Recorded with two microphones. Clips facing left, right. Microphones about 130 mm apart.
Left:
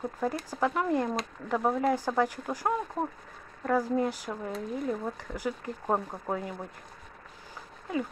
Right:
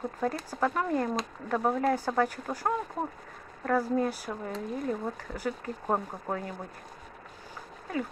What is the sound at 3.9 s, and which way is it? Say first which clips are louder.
Speech: even; 15° left (ahead or behind).